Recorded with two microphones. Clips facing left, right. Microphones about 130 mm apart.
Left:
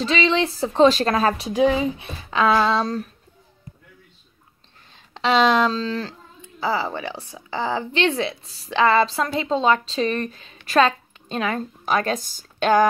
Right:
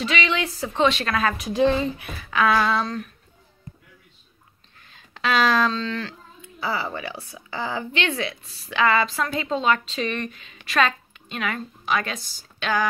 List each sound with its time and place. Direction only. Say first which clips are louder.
0.0 s a woman's voice: left 4 dB; 30° left (ahead or behind)
1.5 s speech: even; 10° left (ahead or behind)
2.0 s speech: left 1 dB; 25° left (ahead or behind)
4.9 s a sound: left 4 dB; 25° left (ahead or behind)
5.7 s a woman's voice: left 2 dB; 35° left (ahead or behind)